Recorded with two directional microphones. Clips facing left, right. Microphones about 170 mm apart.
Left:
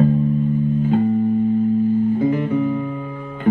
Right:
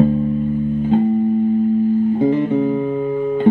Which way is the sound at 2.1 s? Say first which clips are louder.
Right 3 dB; 25° right (ahead or behind).